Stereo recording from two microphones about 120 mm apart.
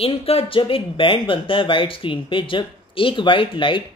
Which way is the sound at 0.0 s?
55° left (ahead or behind).